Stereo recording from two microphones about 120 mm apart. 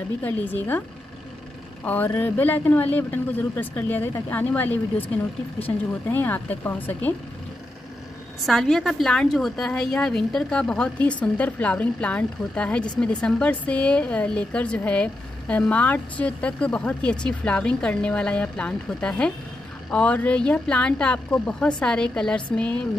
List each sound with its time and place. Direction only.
0.2 s speech: 15° left (ahead or behind)
1.9 s speech: 15° left (ahead or behind)
8.5 s speech: 5° left (ahead or behind)